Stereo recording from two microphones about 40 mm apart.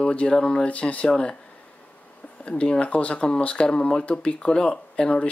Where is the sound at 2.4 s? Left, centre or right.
Left.